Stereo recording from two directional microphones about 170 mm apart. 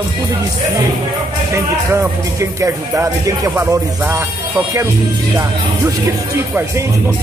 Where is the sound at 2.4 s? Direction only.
20° right (ahead or behind).